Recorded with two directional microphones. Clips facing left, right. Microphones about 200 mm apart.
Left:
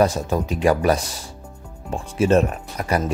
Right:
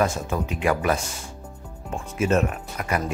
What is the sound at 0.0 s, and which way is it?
Speech, 35° left (ahead or behind).